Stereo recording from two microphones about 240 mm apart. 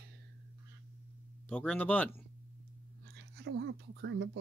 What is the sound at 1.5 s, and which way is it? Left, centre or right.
Speech, centre.